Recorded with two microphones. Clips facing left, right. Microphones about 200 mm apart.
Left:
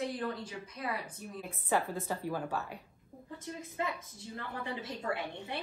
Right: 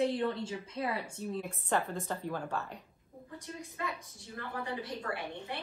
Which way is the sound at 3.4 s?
20° left (ahead or behind).